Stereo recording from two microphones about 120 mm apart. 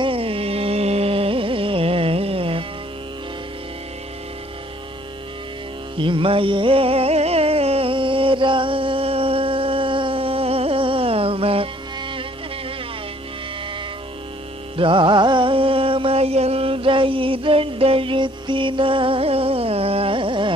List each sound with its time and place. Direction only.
0.0 s carnatic music: 50° right (ahead or behind)
5.9 s music: 45° right (ahead or behind)
14.8 s music: 45° right (ahead or behind)